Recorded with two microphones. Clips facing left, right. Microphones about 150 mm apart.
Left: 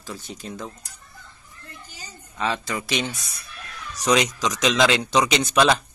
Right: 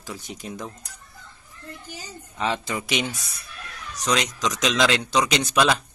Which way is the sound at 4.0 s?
5° left (ahead or behind).